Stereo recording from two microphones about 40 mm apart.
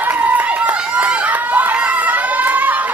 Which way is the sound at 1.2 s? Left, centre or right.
Right.